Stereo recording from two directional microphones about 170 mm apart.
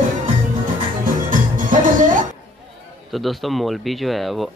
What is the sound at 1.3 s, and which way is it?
Music, 50° right (ahead or behind).